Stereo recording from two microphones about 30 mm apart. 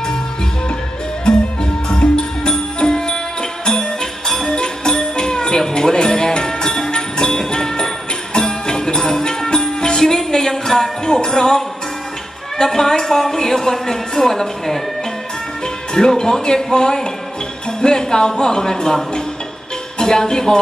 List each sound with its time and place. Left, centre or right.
2.0 s music: left
4.6 s music: left
12.5 s a woman's voice: centre
15.6 s a woman's voice: left
20.0 s a woman's voice: left